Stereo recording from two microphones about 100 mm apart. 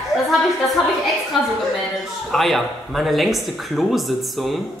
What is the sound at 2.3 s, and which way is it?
Speech, centre (ahead or behind).